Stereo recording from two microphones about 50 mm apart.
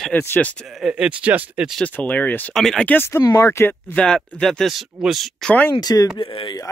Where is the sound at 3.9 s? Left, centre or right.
Centre.